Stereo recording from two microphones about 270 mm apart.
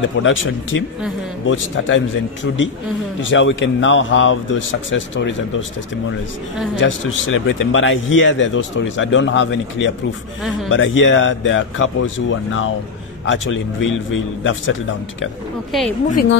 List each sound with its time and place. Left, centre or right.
0.0 s a man's voice: left
1.4 s a man's voice: left
6.8 s a man's voice: left
16.1 s speech: left